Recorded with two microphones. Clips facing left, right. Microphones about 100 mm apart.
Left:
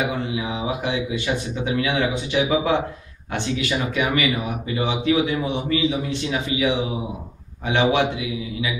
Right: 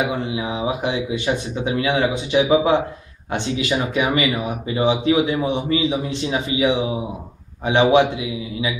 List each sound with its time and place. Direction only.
0.4 s speech: 25° right (ahead or behind)